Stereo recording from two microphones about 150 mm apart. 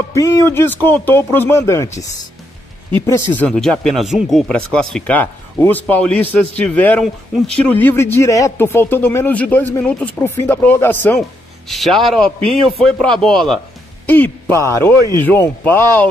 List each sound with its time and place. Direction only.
0.1 s speech: 20° left (ahead or behind)
3.1 s speech: 15° left (ahead or behind)
11.1 s speech: centre (ahead or behind)